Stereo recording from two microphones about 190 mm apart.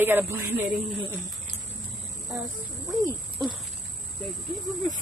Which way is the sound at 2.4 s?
20° right (ahead or behind).